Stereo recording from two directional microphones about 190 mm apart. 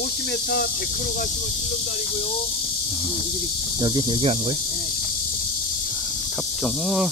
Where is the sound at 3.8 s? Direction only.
25° right (ahead or behind).